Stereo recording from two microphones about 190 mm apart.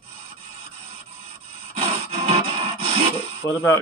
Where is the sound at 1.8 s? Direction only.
30° right (ahead or behind).